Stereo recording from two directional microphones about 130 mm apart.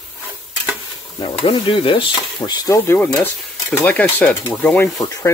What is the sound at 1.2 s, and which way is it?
Stir, 40° left (ahead or behind).